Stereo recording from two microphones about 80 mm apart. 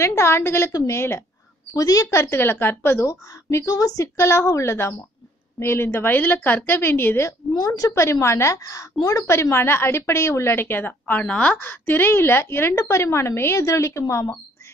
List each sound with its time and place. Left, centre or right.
0.0 s speech: left
1.7 s a woman's voice: left
7.5 s a woman's voice: left; by 11.6 s centre
11.6 s speech: left